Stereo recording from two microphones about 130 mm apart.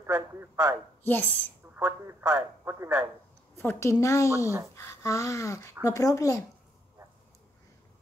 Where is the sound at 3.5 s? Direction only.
20° left (ahead or behind).